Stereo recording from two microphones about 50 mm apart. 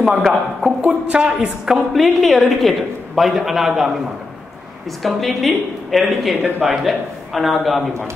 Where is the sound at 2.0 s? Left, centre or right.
Centre.